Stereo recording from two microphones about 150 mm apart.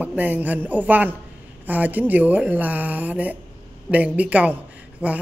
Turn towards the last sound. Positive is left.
turn(degrees=-10)  # may be behind; listen again after turning